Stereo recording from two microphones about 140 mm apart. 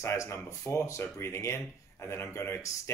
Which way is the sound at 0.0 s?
20° left (ahead or behind).